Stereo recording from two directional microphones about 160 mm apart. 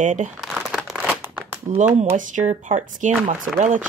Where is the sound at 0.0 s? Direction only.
50° right (ahead or behind).